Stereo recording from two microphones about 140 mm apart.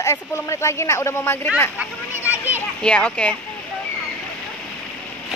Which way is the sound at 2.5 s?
10° left (ahead or behind).